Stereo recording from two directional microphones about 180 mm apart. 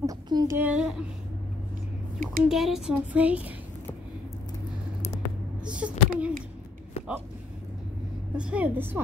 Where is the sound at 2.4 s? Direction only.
Centre (ahead or behind).